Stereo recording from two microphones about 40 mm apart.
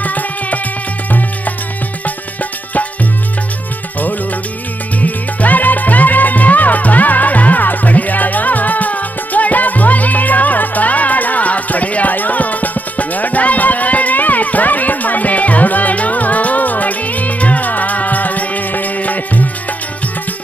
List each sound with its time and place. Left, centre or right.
0.0 s music: left
5.0 s music: left